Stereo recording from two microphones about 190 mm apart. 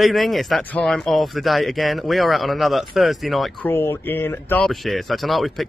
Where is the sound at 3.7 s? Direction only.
15° left (ahead or behind).